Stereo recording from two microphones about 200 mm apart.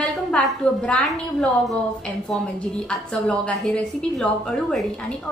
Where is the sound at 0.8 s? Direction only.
5° left (ahead or behind).